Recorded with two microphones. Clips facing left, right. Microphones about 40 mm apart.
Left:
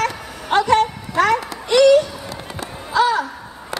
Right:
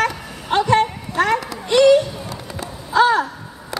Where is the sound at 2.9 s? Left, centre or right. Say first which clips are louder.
Right 2 dB; right.